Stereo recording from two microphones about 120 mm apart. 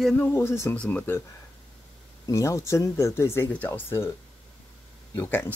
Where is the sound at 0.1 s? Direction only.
20° left (ahead or behind).